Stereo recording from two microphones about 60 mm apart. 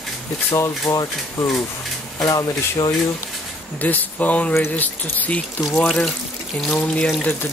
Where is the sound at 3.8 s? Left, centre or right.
Left.